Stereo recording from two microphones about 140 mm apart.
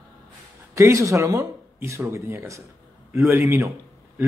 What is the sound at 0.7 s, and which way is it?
A man's voice, 20° right (ahead or behind).